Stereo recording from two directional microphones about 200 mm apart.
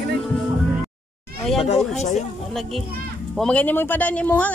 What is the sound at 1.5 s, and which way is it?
Speech, 30° left (ahead or behind).